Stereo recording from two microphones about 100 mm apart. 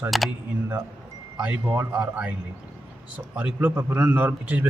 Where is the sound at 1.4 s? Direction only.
15° right (ahead or behind).